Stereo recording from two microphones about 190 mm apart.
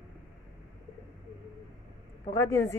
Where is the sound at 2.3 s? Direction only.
15° left (ahead or behind).